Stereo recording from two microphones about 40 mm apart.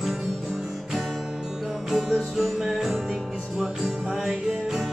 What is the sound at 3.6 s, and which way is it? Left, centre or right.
Music, centre.